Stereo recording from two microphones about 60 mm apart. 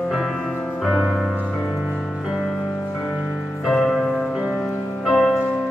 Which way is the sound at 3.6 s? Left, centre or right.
Centre.